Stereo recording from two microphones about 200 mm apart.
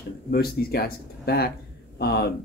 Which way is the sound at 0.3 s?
50° left (ahead or behind).